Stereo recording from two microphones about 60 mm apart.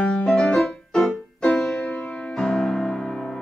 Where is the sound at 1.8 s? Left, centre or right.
Left.